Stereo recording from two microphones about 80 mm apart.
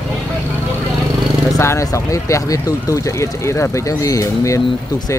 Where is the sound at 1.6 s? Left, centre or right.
Left.